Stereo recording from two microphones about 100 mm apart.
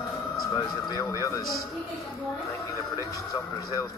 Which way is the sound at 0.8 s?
40° left (ahead or behind).